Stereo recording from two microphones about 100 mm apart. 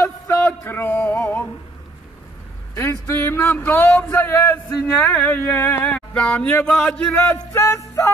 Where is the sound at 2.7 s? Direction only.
30° left (ahead or behind).